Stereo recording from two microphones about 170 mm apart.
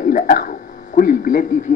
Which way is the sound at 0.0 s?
55° left (ahead or behind).